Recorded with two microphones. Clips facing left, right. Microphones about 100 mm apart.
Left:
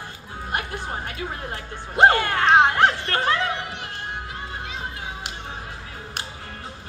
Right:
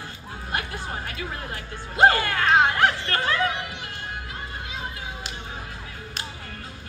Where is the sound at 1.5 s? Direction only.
25° left (ahead or behind).